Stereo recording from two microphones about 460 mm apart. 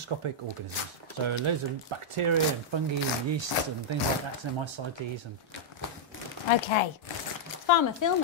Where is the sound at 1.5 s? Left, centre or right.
Right.